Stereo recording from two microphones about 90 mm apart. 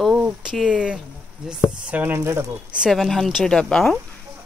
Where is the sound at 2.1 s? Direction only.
30° right (ahead or behind).